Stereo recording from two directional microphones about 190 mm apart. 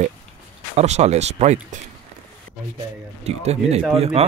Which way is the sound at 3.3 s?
35° right (ahead or behind).